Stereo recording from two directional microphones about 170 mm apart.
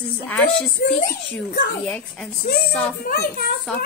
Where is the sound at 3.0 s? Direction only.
70° left (ahead or behind).